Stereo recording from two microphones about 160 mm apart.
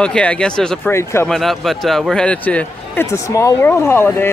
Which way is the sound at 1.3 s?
Centre (ahead or behind).